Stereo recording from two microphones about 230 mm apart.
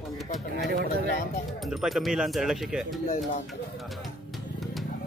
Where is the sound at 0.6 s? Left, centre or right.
Right.